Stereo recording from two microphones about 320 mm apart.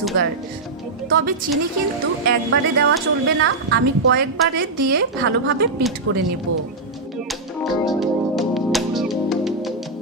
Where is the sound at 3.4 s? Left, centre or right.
Right.